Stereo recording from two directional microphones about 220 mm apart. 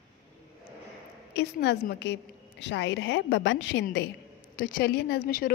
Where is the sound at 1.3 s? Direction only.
50° left (ahead or behind).